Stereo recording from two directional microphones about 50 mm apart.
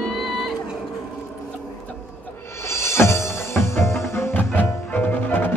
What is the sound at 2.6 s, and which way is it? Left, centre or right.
Music, left.